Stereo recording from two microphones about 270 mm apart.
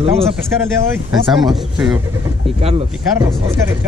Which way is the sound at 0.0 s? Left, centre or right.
Right.